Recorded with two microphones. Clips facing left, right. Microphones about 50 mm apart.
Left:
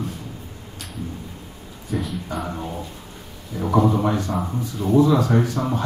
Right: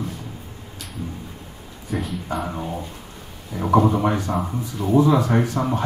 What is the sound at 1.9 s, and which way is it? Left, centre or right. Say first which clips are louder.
Speech: even; centre.